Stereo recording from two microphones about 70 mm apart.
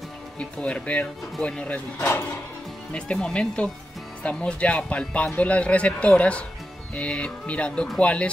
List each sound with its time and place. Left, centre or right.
0.4 s a man's voice: centre
2.0 s speech: left
2.9 s a man's voice: centre